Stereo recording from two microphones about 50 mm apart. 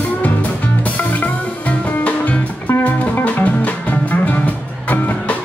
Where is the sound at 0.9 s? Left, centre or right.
Left.